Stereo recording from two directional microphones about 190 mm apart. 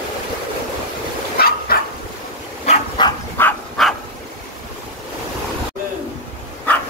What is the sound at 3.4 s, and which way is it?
Dog, 5° left (ahead or behind).